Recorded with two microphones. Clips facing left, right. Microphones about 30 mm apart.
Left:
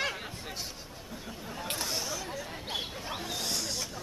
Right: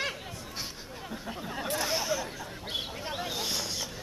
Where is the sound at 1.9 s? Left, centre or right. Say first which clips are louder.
Right 5 dB; centre.